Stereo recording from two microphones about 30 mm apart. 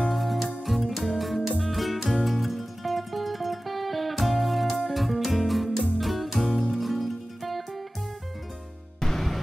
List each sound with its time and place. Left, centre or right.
0.0 s music: centre
9.0 s music: centre